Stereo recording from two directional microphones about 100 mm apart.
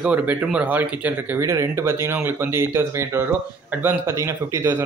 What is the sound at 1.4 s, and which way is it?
Speech, 30° right (ahead or behind).